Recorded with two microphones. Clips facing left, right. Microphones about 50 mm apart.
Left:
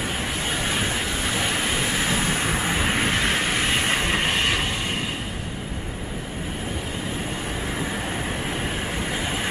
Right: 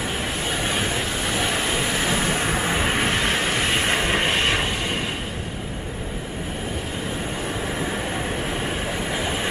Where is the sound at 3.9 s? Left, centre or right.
Right.